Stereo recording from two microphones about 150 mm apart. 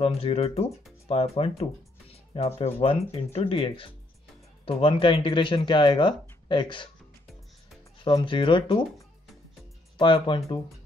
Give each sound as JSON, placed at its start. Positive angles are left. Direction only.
{"t": 0.0, "sound": "speech", "side_deg": 40}
{"t": 8.0, "sound": "speech", "side_deg": 30}
{"t": 9.9, "sound": "speech", "side_deg": 35}